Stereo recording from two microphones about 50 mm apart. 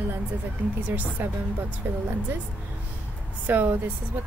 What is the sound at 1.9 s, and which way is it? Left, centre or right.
Speech, right.